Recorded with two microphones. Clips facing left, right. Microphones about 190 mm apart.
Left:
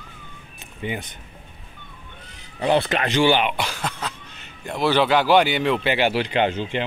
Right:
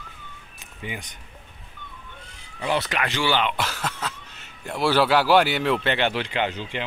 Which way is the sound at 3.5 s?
Centre (ahead or behind).